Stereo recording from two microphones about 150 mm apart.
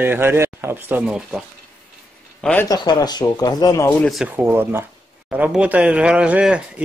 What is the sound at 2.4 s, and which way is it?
Speech, 10° left (ahead or behind).